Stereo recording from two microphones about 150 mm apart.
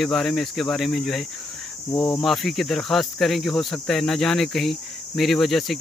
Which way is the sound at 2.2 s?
Centre (ahead or behind).